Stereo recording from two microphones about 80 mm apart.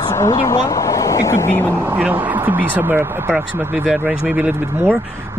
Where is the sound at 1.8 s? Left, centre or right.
Right.